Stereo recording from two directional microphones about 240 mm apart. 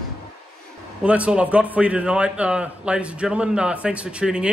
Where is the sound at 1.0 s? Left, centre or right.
Centre.